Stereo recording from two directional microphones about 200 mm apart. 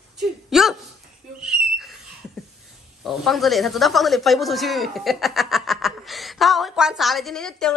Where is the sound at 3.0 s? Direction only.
Centre (ahead or behind).